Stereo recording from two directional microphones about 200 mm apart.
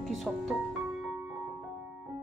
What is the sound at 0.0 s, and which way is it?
Music, centre (ahead or behind).